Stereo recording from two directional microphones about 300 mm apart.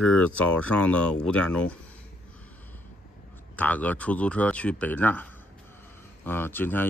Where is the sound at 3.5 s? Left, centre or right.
Centre.